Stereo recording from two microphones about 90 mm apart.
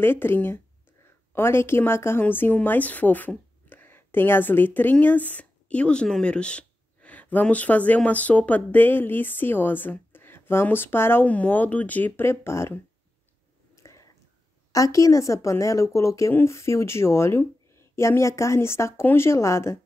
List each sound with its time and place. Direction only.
0.0 s a woman's voice: 25° left (ahead or behind)
13.7 s whispering: 35° left (ahead or behind)
14.7 s speech: 40° left (ahead or behind)